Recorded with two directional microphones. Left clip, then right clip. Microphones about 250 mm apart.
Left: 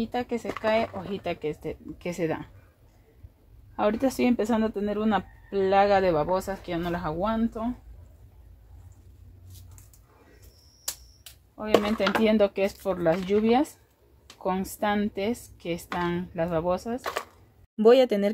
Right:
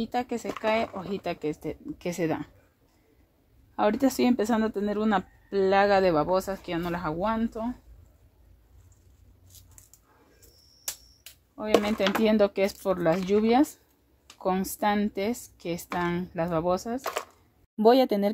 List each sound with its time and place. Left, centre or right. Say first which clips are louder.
0.0 s speech: even; right
3.7 s speech: right 1 dB; right
11.6 s speech: left 1 dB; right
17.0 s speech: even; centre